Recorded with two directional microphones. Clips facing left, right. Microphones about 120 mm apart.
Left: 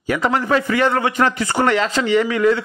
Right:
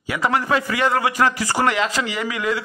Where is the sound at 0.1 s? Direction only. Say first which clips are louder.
Left 3 dB; 40° left (ahead or behind).